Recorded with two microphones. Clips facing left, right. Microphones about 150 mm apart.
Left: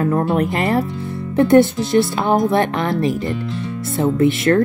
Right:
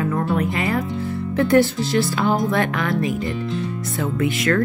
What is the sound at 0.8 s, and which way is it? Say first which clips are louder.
Speech: left 2 dB; 20° left (ahead or behind).